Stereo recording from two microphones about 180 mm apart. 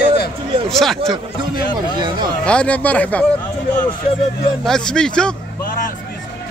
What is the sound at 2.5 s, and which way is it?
Speech, 5° left (ahead or behind).